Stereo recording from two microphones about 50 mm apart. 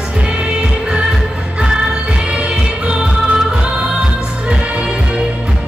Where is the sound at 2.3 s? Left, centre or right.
Centre.